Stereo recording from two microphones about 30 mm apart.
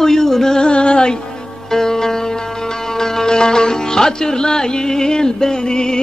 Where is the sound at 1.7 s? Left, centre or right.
Centre.